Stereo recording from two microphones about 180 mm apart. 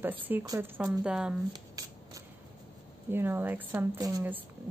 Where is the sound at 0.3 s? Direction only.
15° right (ahead or behind).